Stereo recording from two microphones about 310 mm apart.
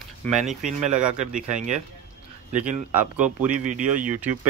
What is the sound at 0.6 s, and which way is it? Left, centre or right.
Speech, right.